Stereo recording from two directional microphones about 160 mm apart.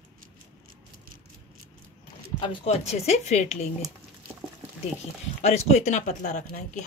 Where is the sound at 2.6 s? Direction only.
45° left (ahead or behind).